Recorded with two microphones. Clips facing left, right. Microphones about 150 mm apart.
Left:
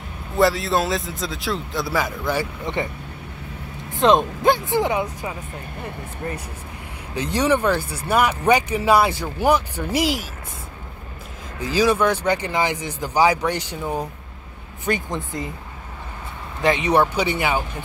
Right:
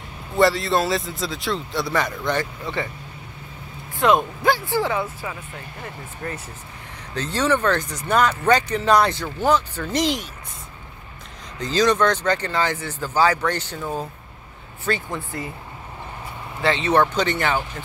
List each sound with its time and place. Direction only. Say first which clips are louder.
0.4 s a man's voice: even; centre (ahead or behind)
2.6 s speech: left 2 dB; 20° left (ahead or behind)
3.9 s speech: left 2 dB; 20° left (ahead or behind)
7.2 s speech: left 2 dB; 15° left (ahead or behind)
11.6 s speech: even; 10° left (ahead or behind)
16.6 s speech: left 1 dB; 15° left (ahead or behind)